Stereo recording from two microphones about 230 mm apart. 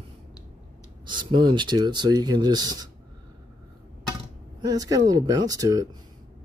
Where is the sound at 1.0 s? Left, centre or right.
Centre.